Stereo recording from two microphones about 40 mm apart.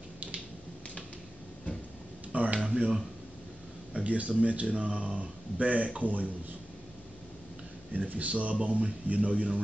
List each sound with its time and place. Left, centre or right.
2.3 s a sound: right
2.6 s speech: centre
4.0 s speech: right
8.1 s speech: right